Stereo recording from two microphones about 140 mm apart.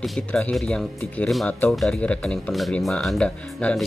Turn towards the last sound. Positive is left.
turn(degrees=5)  # may be behind; listen again after turning